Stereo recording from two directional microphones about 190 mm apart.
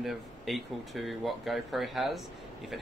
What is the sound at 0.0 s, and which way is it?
Speech, centre (ahead or behind).